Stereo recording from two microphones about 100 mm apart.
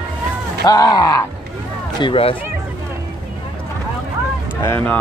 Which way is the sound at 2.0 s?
60° left (ahead or behind).